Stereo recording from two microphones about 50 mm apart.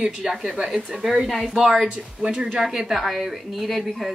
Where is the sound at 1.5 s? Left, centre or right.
Centre.